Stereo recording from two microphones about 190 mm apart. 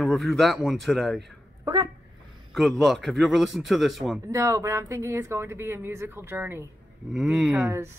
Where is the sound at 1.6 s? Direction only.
20° right (ahead or behind).